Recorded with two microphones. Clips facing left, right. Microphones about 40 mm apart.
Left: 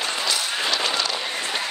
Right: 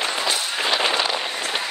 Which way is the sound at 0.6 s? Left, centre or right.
Centre.